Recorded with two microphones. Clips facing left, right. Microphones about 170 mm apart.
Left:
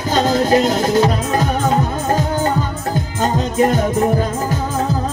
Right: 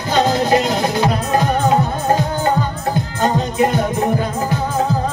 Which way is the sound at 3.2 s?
45° left (ahead or behind).